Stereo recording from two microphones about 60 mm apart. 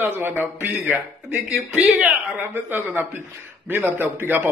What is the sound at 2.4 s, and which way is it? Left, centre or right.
A man's voice, right.